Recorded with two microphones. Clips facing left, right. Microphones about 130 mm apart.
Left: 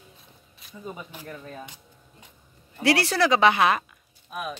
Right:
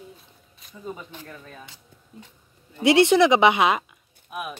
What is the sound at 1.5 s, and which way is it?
Speech, 25° left (ahead or behind).